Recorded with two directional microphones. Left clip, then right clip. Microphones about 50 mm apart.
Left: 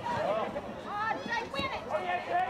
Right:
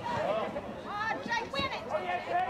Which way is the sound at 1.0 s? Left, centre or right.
Right.